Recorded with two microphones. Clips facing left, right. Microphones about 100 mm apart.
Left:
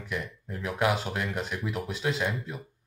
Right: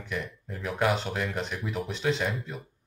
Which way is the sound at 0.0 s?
Centre (ahead or behind).